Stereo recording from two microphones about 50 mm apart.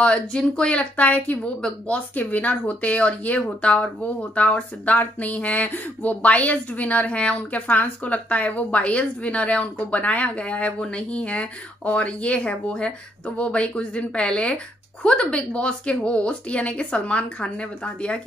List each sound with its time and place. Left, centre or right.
0.0 s speech: centre